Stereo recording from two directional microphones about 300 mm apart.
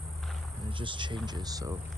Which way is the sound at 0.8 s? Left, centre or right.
Centre.